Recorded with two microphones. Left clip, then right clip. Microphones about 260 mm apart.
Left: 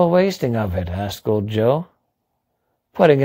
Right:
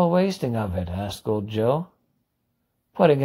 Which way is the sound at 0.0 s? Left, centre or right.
Left.